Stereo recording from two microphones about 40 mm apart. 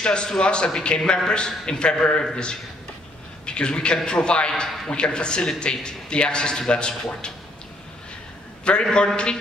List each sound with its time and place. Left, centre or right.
0.0 s a man's voice: left
3.4 s a man's voice: left
8.9 s a man's voice: left